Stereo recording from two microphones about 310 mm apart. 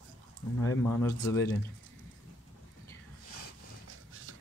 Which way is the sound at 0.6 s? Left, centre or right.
Centre.